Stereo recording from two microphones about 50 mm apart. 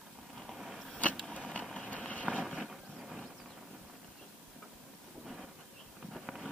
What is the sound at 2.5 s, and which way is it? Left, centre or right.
Wild animals, centre.